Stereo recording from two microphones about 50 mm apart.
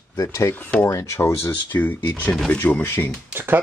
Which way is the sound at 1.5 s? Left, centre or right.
Left.